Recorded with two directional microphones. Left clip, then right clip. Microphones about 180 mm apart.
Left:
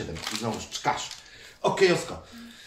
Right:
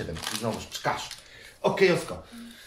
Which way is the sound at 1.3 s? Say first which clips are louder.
Even; 15° left (ahead or behind).